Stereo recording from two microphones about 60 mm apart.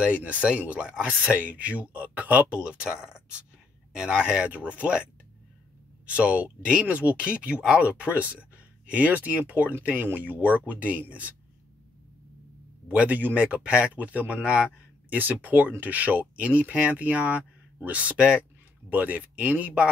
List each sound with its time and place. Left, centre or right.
0.0 s speech: right
2.8 s speech: centre
6.0 s speech: right
12.8 s speech: right
14.5 s a sound: centre
15.1 s speech: right